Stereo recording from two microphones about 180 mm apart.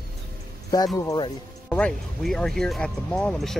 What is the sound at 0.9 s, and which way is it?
Speech, 20° left (ahead or behind).